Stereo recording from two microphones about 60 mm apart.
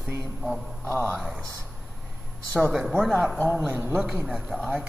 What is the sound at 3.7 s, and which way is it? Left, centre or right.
Speech, right.